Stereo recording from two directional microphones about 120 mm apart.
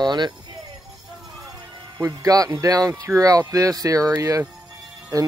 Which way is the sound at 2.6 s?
30° right (ahead or behind).